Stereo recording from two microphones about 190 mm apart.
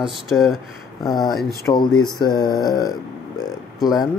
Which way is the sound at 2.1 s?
20° left (ahead or behind).